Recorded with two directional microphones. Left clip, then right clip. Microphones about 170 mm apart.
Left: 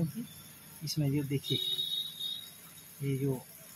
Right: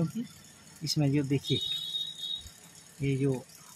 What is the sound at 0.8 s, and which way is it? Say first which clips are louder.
Speech: right 5 dB; 30° right (ahead or behind).